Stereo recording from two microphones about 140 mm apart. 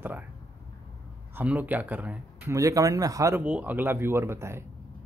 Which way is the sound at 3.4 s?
10° right (ahead or behind).